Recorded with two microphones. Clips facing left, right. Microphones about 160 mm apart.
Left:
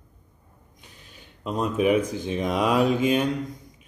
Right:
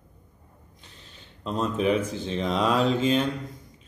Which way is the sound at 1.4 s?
10° left (ahead or behind).